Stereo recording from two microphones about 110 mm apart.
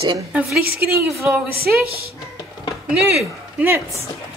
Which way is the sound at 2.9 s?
10° right (ahead or behind).